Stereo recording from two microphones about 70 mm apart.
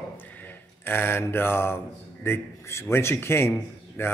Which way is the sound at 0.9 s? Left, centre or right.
Left.